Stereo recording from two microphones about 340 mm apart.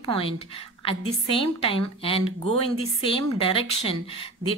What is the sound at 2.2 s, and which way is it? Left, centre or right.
Speech, right.